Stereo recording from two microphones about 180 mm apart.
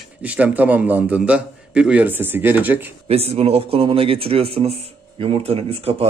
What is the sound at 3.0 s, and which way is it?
Speech, 35° right (ahead or behind).